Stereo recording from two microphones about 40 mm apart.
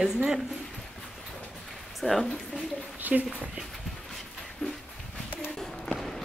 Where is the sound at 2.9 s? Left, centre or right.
Right.